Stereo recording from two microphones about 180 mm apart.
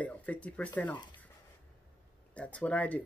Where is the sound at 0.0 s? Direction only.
10° left (ahead or behind).